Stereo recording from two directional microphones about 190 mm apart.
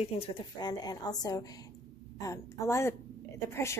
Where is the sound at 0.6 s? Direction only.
20° left (ahead or behind).